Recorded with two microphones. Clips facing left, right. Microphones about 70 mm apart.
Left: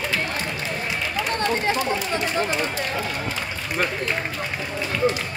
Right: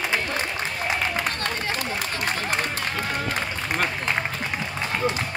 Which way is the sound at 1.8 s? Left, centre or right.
Right.